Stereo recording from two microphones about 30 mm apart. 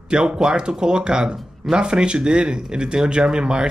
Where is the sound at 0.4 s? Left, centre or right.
Right.